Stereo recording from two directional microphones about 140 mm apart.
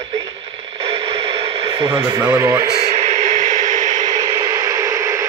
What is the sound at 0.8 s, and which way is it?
Radio, 40° right (ahead or behind).